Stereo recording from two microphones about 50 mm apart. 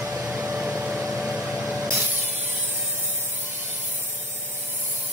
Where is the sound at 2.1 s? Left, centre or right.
Right.